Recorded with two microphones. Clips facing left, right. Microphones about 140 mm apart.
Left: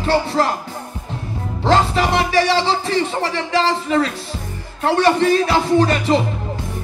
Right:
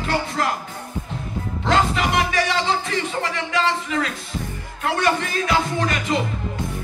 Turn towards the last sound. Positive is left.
turn(degrees=35)  # may be behind; listen again after turning